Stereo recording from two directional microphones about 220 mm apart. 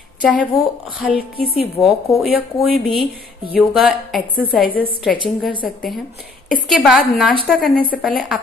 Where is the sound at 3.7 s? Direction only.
5° right (ahead or behind).